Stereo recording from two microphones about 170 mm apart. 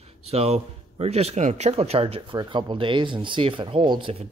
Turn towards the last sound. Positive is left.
turn(degrees=-30)  # may be behind; listen again after turning